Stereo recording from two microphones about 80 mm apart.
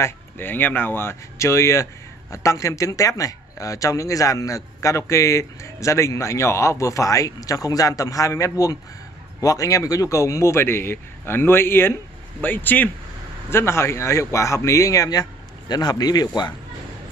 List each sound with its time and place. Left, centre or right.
0.0 s speech: left
13.5 s speech: left